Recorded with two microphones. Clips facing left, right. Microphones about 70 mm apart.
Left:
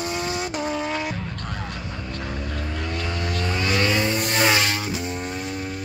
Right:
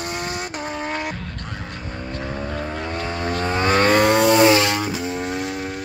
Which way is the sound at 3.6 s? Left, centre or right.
Right.